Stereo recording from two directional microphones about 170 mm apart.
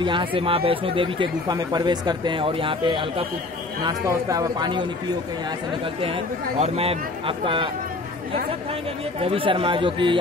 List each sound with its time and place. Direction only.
0.0 s a man's voice: 30° right (ahead or behind)
5.9 s speech: 30° right (ahead or behind)
9.2 s speech: 30° right (ahead or behind)